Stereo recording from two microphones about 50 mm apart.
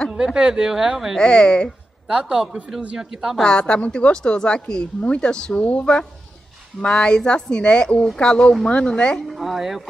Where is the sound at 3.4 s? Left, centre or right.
Centre.